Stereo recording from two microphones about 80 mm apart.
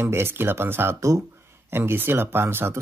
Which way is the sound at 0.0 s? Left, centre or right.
Right.